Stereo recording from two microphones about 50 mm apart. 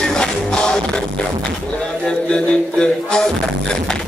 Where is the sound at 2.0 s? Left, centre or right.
Centre.